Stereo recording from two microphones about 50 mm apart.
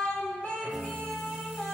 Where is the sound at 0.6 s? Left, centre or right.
Centre.